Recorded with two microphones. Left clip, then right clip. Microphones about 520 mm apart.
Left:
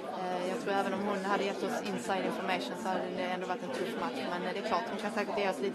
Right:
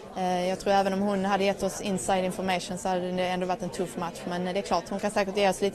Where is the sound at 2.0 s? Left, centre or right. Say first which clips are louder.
Right 7 dB; right.